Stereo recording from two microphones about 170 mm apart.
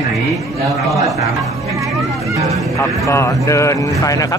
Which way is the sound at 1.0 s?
20° right (ahead or behind).